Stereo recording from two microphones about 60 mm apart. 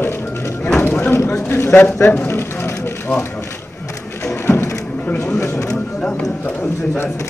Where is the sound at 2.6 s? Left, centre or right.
Left.